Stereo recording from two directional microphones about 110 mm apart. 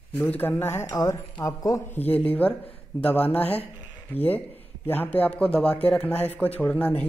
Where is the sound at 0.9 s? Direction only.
35° left (ahead or behind).